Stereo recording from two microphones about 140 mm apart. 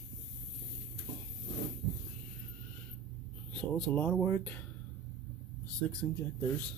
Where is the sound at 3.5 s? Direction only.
10° left (ahead or behind).